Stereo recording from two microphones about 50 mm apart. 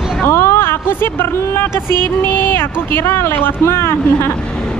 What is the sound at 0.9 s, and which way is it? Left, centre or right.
Speech, left.